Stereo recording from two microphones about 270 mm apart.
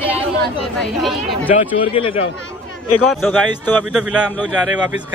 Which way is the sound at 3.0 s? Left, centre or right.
Centre.